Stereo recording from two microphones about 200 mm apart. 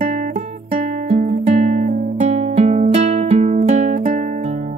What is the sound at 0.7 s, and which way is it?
Music, 35° right (ahead or behind).